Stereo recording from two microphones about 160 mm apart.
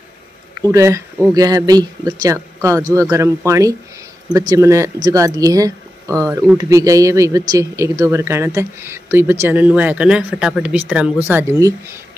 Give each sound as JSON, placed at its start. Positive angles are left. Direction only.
{"t": 0.6, "sound": "speech", "side_deg": -20}
{"t": 11.5, "sound": "speech", "side_deg": -20}